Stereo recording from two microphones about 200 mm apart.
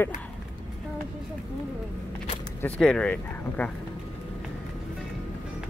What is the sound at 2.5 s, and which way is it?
Speech, 5° left (ahead or behind).